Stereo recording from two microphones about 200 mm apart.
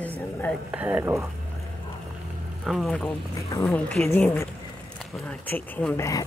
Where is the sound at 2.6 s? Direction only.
Centre (ahead or behind).